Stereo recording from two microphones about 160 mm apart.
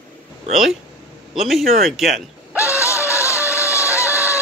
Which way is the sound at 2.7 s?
15° left (ahead or behind).